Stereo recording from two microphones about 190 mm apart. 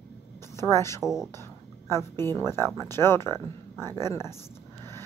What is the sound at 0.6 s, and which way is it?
A woman's voice, 15° left (ahead or behind).